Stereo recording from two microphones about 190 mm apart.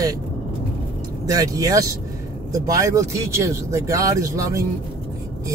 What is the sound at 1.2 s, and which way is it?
Speech, 20° right (ahead or behind).